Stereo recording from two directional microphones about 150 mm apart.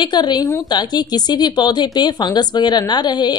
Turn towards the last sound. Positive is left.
turn(degrees=30)  # may be behind; listen again after turning